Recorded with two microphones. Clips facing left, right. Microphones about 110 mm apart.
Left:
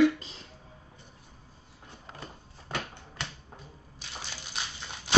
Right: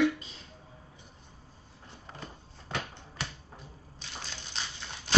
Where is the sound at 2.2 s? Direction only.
Centre (ahead or behind).